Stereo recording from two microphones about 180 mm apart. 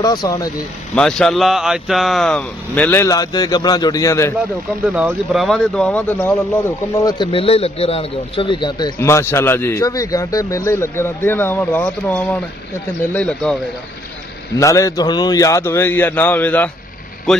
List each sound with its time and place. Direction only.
0.0 s a man's voice: 20° left (ahead or behind)
0.9 s a man's voice: 5° left (ahead or behind)
4.9 s a man's voice: 5° right (ahead or behind)
7.0 s a man's voice: 25° left (ahead or behind); by 13.6 s 5° left (ahead or behind)
14.6 s a man's voice: 15° left (ahead or behind); by 17.4 s centre (ahead or behind)